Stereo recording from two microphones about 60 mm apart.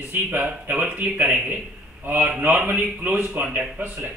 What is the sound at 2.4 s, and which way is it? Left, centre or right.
Speech, right.